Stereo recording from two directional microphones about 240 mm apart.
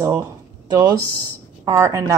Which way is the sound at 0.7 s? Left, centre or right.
Centre.